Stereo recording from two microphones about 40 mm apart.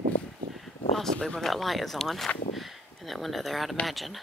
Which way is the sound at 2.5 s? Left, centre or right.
Centre.